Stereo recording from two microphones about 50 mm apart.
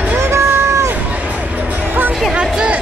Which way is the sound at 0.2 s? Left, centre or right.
Right.